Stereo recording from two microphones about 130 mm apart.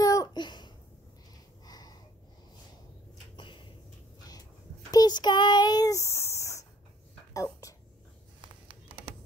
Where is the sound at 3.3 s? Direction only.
40° left (ahead or behind).